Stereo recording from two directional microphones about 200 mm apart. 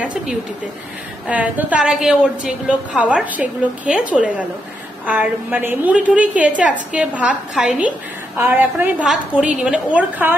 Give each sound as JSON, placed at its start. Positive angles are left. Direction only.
{"t": 0.0, "sound": "a woman's voice", "side_deg": -5}